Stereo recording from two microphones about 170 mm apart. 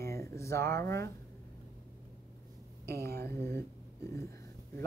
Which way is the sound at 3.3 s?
15° left (ahead or behind).